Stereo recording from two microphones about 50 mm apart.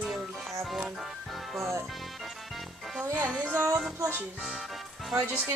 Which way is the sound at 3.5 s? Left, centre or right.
Right.